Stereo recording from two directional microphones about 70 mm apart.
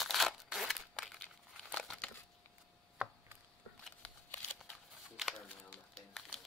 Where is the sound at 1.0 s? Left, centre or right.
Centre.